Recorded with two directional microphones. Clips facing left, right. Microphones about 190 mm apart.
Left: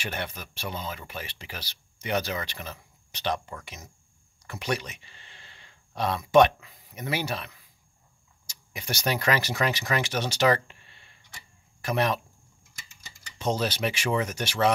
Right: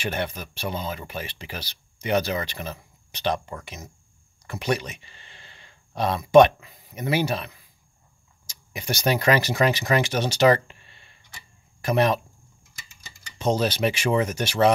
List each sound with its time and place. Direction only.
0.0 s speech: 20° right (ahead or behind)
4.5 s speech: 20° right (ahead or behind)
6.3 s speech: 20° right (ahead or behind)
11.8 s speech: 20° right (ahead or behind)
13.4 s speech: 20° right (ahead or behind)